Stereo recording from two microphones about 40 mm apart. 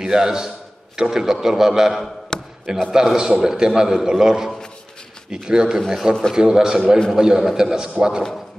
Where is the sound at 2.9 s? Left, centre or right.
Centre.